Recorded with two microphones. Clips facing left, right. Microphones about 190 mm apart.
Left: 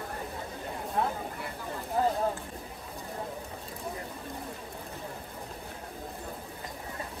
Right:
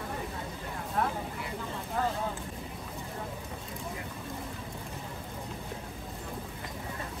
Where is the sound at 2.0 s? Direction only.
25° left (ahead or behind).